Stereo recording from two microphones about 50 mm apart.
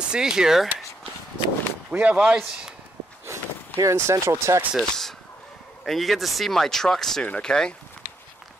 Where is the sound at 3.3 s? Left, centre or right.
Right.